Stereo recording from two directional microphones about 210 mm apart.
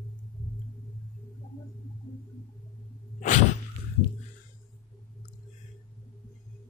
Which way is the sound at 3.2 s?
35° left (ahead or behind).